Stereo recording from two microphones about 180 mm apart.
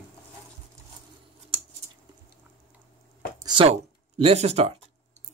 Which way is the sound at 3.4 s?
30° right (ahead or behind).